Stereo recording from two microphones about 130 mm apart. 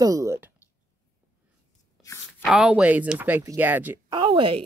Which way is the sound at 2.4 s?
5° right (ahead or behind).